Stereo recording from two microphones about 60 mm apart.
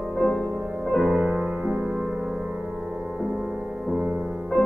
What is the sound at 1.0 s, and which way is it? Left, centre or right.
Music, centre.